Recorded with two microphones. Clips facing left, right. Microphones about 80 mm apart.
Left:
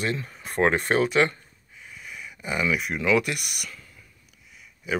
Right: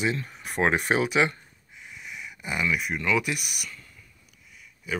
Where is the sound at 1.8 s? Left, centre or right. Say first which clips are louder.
Even; centre.